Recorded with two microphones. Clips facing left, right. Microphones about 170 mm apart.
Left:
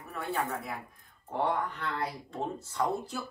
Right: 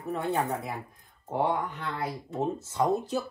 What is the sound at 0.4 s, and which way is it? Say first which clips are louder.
Speech: right 4 dB; 35° right (ahead or behind).